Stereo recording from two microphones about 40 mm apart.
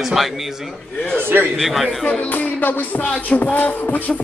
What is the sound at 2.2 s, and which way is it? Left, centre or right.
Music, left.